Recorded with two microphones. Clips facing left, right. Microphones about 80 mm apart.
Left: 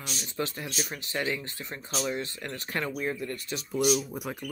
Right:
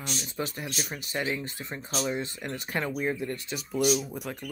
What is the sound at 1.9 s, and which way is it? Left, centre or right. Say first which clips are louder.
Speech: right 1 dB; centre.